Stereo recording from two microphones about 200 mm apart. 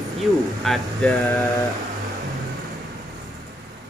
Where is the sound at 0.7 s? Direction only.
Centre (ahead or behind).